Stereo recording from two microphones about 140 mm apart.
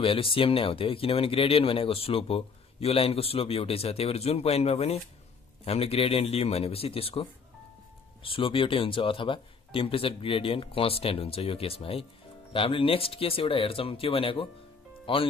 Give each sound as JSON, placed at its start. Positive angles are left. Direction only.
{"t": 0.0, "sound": "speech", "side_deg": 40}